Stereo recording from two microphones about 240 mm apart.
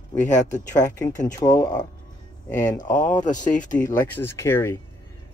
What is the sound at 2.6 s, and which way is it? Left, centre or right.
Speech, left.